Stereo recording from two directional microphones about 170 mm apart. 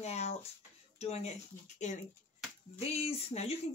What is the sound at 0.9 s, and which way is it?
Speech, 40° left (ahead or behind).